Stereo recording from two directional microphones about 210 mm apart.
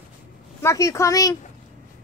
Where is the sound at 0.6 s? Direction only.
15° left (ahead or behind).